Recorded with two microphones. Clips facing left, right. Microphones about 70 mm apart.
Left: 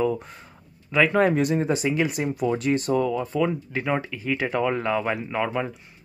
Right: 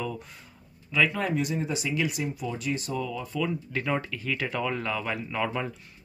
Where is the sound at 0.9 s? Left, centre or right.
Left.